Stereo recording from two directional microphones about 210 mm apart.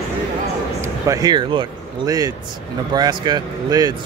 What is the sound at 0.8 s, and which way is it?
Speech, 15° right (ahead or behind).